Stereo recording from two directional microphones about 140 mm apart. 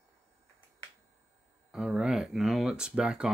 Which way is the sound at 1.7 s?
Centre (ahead or behind).